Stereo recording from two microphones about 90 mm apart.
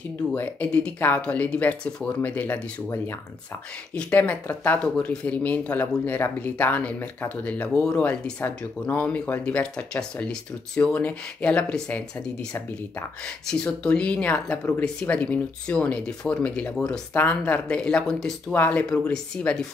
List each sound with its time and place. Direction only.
0.3 s speech: 15° left (ahead or behind)
13.5 s speech: 10° left (ahead or behind)
18.5 s speech: 15° left (ahead or behind)